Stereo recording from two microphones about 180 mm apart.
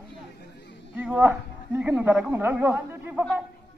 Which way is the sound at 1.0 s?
10° right (ahead or behind).